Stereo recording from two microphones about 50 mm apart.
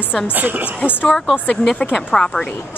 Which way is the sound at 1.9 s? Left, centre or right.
Centre.